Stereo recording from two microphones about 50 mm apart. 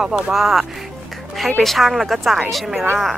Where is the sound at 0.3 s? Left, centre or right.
Centre.